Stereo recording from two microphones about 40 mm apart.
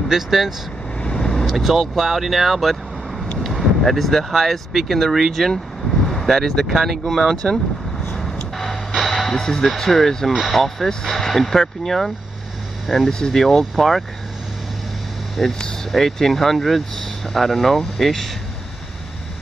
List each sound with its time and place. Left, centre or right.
0.1 s speech: centre
1.0 s vehicle: left
1.4 s speech: centre
6.7 s speech: centre
8.1 s vehicle: centre
9.1 s a sound: centre
9.8 s speech: centre
12.8 s speech: centre
13.1 s speech: centre
13.4 s speech: centre
15.4 s speech: centre